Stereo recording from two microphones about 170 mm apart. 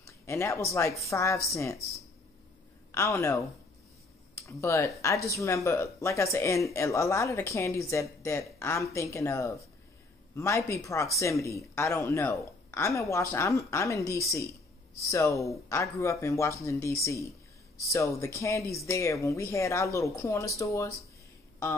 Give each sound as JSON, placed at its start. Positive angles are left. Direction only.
{"t": 0.0, "sound": "a sound", "side_deg": 15}
{"t": 0.7, "sound": "speech", "side_deg": 15}
{"t": 2.9, "sound": "speech", "side_deg": 15}
{"t": 4.5, "sound": "speech", "side_deg": 15}